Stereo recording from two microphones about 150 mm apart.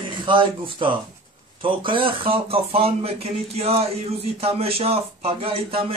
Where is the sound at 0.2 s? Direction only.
30° right (ahead or behind).